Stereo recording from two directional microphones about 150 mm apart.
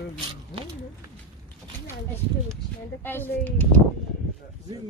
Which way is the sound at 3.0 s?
15° left (ahead or behind).